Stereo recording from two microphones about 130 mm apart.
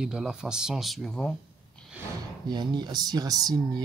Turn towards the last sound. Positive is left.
turn(degrees=-30)  # may be behind; listen again after turning